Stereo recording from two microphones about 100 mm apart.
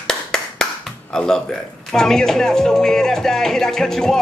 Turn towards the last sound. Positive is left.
turn(degrees=5)  # may be behind; listen again after turning